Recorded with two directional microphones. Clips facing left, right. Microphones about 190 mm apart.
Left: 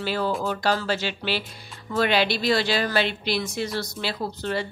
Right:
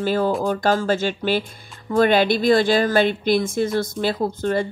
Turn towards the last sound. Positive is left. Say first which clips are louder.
# right 6 dB
turn(degrees=-50)  # may be behind; listen again after turning